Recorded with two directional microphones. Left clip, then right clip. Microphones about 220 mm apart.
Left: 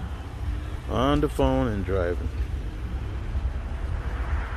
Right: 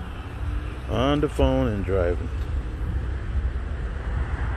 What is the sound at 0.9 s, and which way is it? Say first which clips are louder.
Speech: right 1 dB; 5° left (ahead or behind).